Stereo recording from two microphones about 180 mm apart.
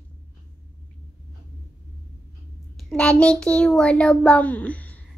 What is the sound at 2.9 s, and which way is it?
A child's voice, 5° left (ahead or behind).